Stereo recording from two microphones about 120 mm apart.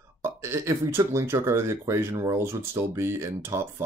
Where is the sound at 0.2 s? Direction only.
20° right (ahead or behind).